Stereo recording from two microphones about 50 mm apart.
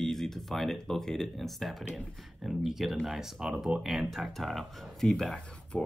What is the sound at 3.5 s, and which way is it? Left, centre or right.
Speech, right.